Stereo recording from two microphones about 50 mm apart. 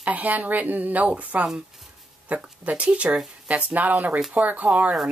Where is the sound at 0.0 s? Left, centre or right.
Right.